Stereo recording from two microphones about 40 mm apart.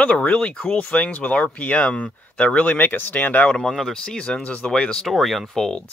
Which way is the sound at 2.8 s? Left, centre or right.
Left.